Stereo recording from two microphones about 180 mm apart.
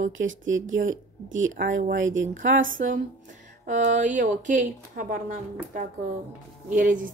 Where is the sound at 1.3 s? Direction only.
90° right.